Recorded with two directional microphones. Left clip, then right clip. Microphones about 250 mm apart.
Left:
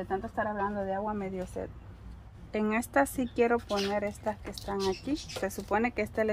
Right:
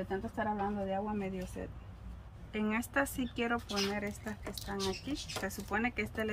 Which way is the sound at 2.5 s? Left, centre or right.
Left.